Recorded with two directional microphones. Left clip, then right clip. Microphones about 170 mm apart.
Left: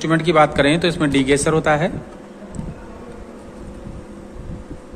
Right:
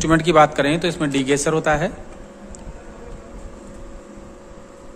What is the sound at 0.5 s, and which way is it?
A man's voice, 20° right (ahead or behind).